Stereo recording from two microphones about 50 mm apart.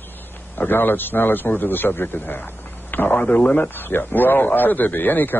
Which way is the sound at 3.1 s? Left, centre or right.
Left.